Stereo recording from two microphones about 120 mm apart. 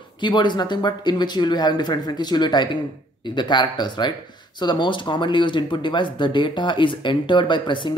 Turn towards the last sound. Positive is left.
turn(degrees=40)  # may be behind; listen again after turning